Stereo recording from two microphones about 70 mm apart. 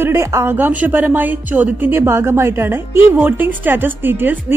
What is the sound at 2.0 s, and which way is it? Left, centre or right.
A woman's voice, right.